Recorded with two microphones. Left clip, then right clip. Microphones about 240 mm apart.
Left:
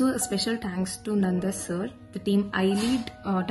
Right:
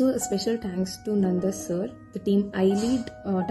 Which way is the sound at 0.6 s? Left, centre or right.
Left.